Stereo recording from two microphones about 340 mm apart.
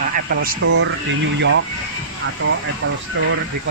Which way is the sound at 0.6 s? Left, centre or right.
Right.